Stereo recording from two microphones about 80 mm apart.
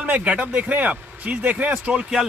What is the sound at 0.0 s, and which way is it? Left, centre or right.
Speech, centre.